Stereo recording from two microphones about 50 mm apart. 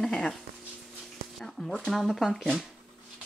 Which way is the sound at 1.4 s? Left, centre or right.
Centre.